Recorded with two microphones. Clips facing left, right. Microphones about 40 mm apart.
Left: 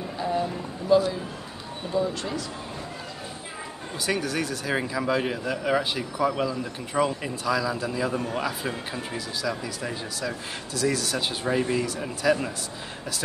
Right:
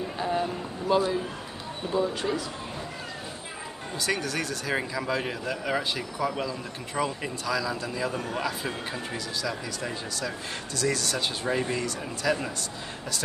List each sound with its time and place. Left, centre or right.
0.2 s a sound: centre
0.8 s a man's voice: right
4.0 s speech: centre